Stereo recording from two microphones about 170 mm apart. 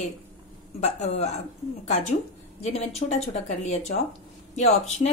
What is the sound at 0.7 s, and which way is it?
A woman's voice, 40° left (ahead or behind).